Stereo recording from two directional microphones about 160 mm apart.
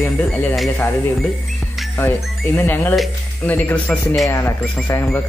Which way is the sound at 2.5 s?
10° left (ahead or behind).